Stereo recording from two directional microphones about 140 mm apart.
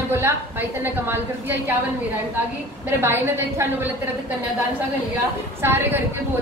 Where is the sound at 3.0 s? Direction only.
20° right (ahead or behind).